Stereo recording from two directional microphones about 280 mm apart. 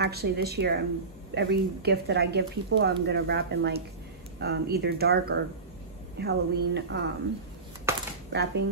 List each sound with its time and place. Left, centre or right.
0.0 s speech: right
7.9 s a sound: centre
8.3 s speech: right